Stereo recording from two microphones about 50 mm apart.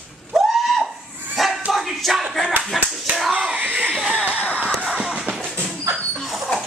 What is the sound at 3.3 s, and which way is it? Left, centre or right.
Slap, right.